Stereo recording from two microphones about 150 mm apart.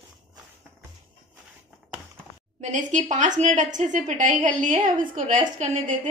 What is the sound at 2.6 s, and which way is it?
A woman's voice, 55° right (ahead or behind).